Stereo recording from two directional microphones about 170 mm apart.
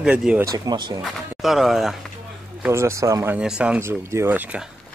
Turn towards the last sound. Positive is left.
turn(degrees=-10)  # may be behind; listen again after turning